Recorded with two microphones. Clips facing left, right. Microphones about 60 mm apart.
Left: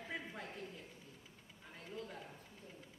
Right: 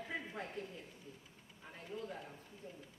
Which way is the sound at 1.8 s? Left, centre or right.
Centre.